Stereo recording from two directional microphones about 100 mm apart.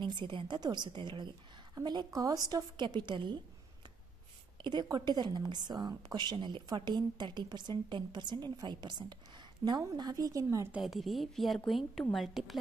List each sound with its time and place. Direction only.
0.0 s a woman's voice: 50° right (ahead or behind)
4.6 s a woman's voice: 45° right (ahead or behind)
10.8 s a woman's voice: centre (ahead or behind)